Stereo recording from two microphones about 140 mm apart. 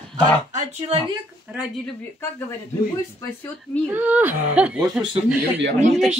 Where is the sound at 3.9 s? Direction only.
15° right (ahead or behind).